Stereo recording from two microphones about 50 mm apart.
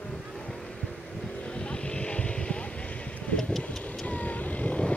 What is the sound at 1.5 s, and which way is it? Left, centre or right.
Vehicle, left.